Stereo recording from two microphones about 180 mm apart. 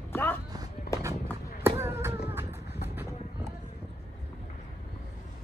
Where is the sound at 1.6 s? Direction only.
15° right (ahead or behind).